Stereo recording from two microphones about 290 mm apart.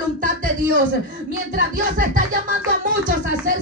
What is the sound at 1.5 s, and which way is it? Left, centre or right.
Speech, right.